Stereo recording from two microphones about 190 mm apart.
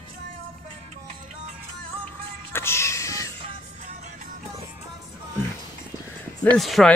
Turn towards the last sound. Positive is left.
turn(degrees=0)  # may be behind; listen again after turning